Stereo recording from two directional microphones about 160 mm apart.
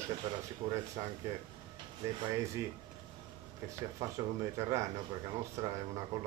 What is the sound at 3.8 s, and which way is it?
Speech, 20° right (ahead or behind).